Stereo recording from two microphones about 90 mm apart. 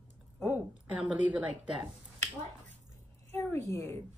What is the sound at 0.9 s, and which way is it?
Speech, 15° right (ahead or behind).